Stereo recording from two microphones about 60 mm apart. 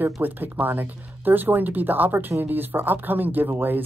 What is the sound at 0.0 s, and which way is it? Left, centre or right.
Speech, right.